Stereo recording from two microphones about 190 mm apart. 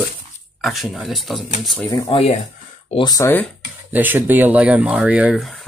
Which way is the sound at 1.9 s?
30° left (ahead or behind).